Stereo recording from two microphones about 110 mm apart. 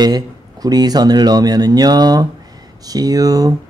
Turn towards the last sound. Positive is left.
turn(degrees=-35)  # may be behind; listen again after turning